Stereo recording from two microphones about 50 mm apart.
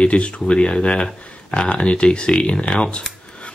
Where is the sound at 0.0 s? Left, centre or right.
Left.